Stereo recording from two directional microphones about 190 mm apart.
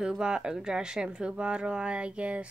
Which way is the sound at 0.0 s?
5° right (ahead or behind).